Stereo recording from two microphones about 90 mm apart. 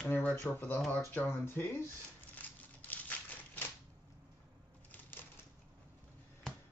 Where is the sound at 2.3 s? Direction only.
20° left (ahead or behind).